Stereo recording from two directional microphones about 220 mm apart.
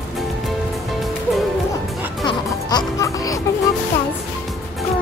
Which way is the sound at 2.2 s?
20° left (ahead or behind).